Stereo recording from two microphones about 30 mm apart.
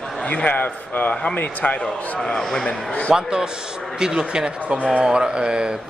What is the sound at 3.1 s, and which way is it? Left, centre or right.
A man's voice, right.